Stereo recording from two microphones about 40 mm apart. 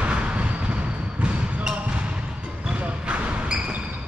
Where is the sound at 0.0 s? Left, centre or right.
Right.